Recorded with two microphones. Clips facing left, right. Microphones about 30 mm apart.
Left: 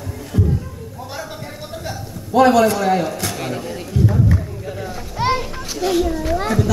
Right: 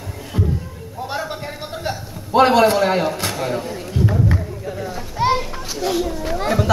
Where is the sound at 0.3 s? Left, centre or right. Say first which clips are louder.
Left 2 dB; right.